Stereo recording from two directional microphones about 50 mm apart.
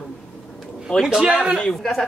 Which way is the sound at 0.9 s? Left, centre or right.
Centre.